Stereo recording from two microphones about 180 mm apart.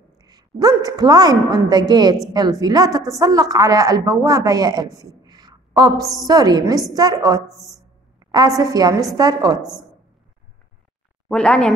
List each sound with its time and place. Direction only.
0.2 s a woman's voice: 20° right (ahead or behind)
11.2 s speech: 5° left (ahead or behind)